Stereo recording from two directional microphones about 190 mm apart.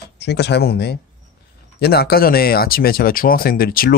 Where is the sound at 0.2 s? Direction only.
60° left (ahead or behind).